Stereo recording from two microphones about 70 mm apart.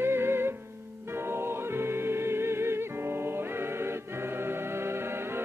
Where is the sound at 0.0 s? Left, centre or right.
Right.